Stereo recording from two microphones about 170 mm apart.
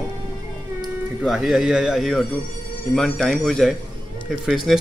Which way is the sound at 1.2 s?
5° right (ahead or behind).